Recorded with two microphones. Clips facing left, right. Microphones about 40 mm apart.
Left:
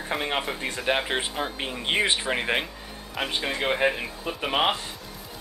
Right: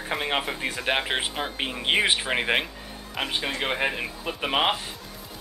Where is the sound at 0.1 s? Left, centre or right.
Centre.